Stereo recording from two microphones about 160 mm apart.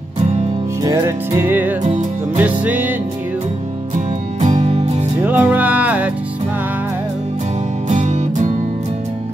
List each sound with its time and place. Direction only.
0.8 s music: 15° right (ahead or behind)
3.9 s music: 50° right (ahead or behind)
5.2 s music: 10° right (ahead or behind)
7.9 s music: 50° right (ahead or behind)